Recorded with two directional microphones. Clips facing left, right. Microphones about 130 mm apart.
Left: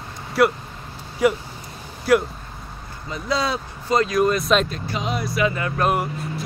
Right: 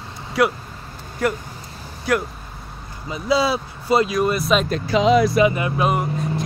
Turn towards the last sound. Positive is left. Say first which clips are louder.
# right 2 dB
turn(degrees=0)  # may be behind; listen again after turning